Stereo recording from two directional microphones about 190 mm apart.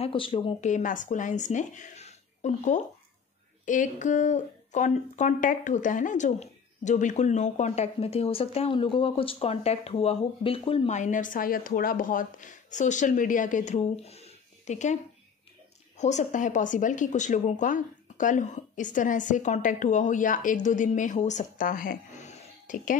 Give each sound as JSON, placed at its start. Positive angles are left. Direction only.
{"t": 0.0, "sound": "a woman's voice", "side_deg": 30}
{"t": 16.0, "sound": "a woman's voice", "side_deg": 40}